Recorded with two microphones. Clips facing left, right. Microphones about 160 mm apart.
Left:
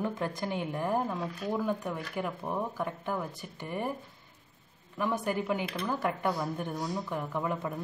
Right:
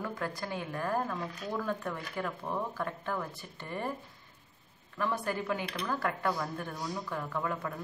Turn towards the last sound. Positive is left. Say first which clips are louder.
# left 2 dB
turn(degrees=20)  # may be behind; listen again after turning